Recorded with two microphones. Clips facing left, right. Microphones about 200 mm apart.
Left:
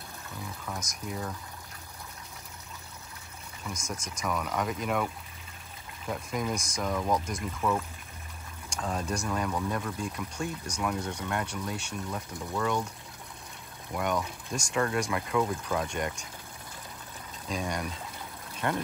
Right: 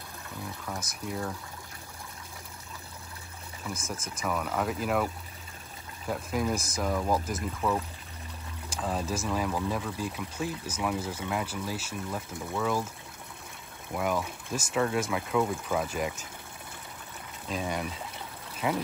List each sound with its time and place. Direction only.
1.0 s speech: centre (ahead or behind)
3.7 s speech: 55° right (ahead or behind)
4.2 s speech: 5° right (ahead or behind)
13.9 s speech: 5° right (ahead or behind)
17.5 s speech: centre (ahead or behind)